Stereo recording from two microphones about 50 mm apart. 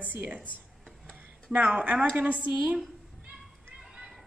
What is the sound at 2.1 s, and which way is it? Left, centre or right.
Speech, right.